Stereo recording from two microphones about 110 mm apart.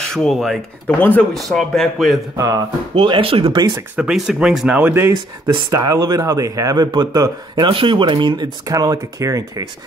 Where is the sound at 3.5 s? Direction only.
40° right (ahead or behind).